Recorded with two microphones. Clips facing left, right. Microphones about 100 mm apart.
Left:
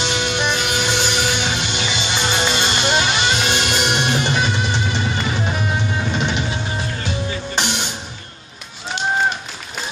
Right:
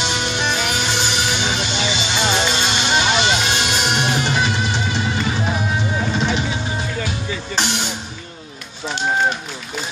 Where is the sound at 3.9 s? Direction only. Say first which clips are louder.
Even; 10° right (ahead or behind).